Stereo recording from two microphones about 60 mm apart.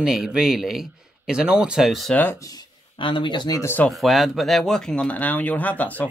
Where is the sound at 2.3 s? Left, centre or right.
Left.